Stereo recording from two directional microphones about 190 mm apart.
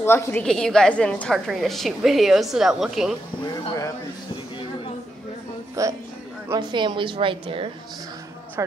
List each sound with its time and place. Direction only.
0.0 s a woman's voice: 10° left (ahead or behind)
5.8 s a woman's voice: 15° right (ahead or behind)
8.6 s speech: 15° right (ahead or behind)